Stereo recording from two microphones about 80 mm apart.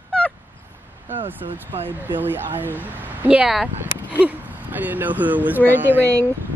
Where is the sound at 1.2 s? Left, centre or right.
Right.